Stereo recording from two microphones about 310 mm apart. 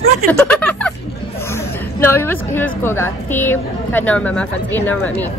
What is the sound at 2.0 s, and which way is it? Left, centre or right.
A woman's voice, centre.